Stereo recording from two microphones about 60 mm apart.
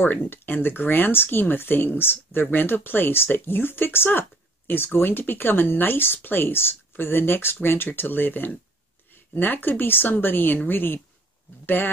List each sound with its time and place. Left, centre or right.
0.0 s speech: left